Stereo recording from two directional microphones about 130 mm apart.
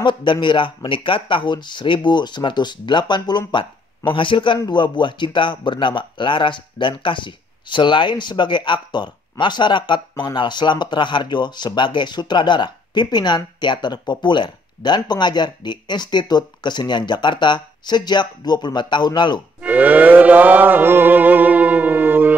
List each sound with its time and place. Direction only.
0.0 s speech: 40° left (ahead or behind)
19.6 s music: 10° right (ahead or behind)